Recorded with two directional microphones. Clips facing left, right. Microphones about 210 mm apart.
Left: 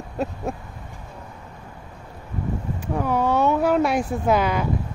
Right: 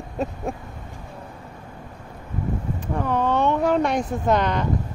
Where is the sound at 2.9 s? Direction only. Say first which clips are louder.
Left 1 dB; 10° left (ahead or behind).